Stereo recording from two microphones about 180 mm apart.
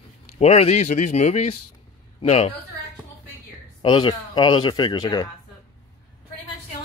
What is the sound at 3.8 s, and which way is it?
Speech, 25° left (ahead or behind).